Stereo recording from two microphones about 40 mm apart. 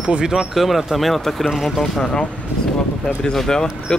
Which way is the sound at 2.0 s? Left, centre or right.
Centre.